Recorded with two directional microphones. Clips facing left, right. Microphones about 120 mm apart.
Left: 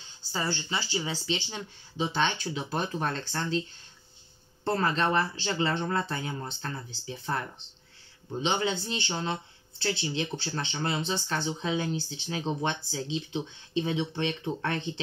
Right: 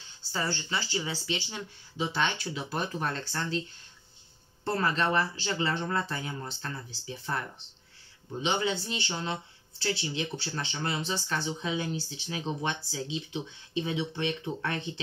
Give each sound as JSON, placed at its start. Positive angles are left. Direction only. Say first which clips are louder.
{"t": 0.3, "sound": "speech", "louder": "left 1 dB", "side_deg": 15}
{"t": 4.6, "sound": "speech", "louder": "left 1 dB", "side_deg": 30}